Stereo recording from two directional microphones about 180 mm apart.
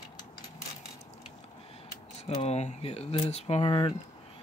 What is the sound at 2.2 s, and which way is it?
Speech, 35° left (ahead or behind).